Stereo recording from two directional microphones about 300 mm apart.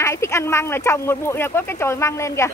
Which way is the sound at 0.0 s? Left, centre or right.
Centre.